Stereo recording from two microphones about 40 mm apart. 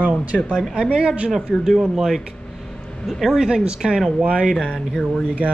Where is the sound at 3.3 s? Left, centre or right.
Centre.